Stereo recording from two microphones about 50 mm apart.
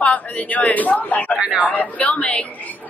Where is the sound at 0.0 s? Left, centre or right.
Left.